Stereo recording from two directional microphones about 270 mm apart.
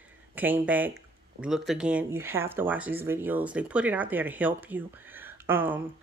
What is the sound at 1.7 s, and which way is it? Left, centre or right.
Speech, centre.